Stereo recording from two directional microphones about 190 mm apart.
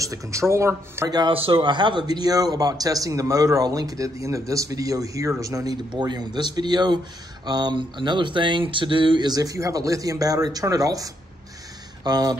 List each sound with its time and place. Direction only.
0.0 s speech: 15° right (ahead or behind)
5.9 s a sound: 20° right (ahead or behind)
12.0 s speech: 20° right (ahead or behind)